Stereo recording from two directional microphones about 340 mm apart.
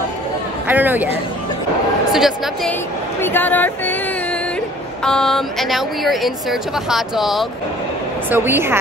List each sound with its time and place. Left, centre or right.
0.7 s speech: centre
2.1 s speech: centre
3.2 s a sound: centre
5.0 s a woman's voice: centre